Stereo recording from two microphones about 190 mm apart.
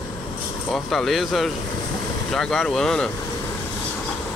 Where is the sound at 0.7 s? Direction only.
Centre (ahead or behind).